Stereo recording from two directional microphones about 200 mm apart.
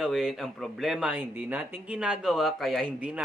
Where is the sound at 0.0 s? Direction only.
Centre (ahead or behind).